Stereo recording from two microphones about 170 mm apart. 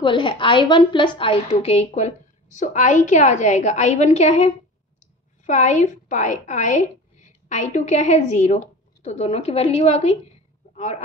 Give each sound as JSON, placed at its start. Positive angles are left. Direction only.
{"t": 0.0, "sound": "a woman's voice", "side_deg": 30}